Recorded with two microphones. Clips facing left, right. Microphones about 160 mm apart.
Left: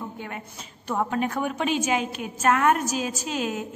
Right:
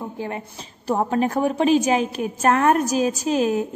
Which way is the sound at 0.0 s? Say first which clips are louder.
Right 6 dB; 30° right (ahead or behind).